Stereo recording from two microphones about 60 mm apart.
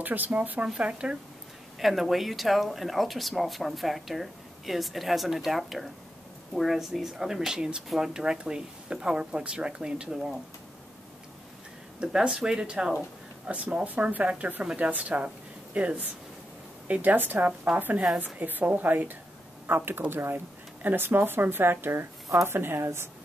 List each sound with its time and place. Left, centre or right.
0.0 s speech: right
1.8 s speech: centre
12.0 s speech: centre; by 22.8 s right